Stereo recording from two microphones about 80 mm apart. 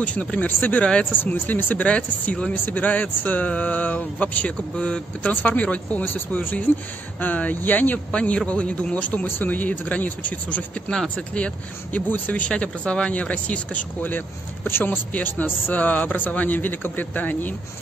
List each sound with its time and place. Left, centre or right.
0.0 s speech: centre